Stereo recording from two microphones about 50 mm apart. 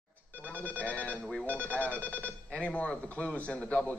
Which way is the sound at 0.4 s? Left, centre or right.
Left.